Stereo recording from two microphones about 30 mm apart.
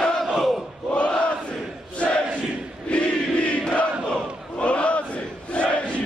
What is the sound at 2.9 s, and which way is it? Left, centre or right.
Battle cry, left.